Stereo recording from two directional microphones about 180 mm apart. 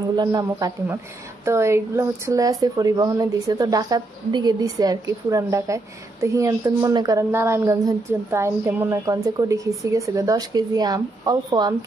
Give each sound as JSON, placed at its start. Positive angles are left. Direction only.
{"t": 0.1, "sound": "a woman's voice", "side_deg": -20}